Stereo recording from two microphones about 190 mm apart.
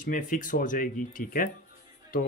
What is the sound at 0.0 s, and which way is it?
Speech, 45° left (ahead or behind).